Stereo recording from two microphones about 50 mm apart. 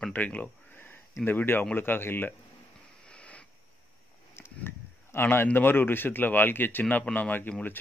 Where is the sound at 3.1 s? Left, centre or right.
Left.